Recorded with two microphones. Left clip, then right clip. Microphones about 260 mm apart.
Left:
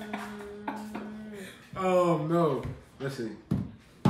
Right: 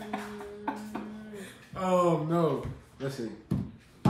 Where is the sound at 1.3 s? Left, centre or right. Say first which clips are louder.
Left 1 dB; centre.